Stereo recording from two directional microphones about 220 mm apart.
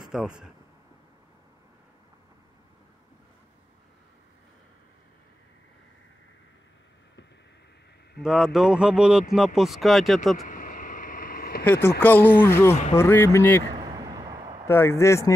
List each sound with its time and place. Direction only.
0.1 s speech: centre (ahead or behind)
8.2 s speech: centre (ahead or behind)
10.4 s a sound: 40° left (ahead or behind)
11.6 s speech: 10° left (ahead or behind)
13.7 s a sound: 20° right (ahead or behind)
14.7 s speech: 10° left (ahead or behind)